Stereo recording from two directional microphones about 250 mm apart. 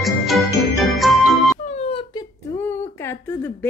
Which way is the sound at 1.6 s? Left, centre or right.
Left.